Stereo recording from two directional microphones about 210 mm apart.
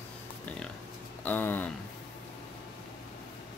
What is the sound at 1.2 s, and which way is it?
Speech, 10° left (ahead or behind).